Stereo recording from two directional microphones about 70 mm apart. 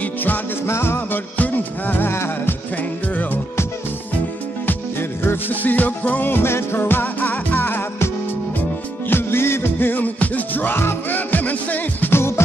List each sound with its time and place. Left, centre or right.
0.0 s music: left
0.7 s music: left
5.2 s music: left
9.1 s music: left
12.1 s music: left